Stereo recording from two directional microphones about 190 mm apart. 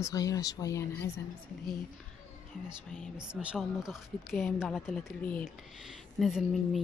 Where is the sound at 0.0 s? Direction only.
20° left (ahead or behind).